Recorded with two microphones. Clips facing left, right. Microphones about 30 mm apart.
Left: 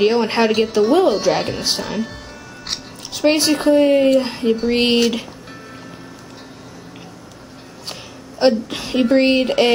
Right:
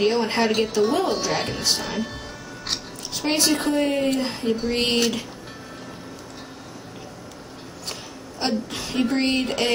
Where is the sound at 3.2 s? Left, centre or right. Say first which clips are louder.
Left 7 dB; centre.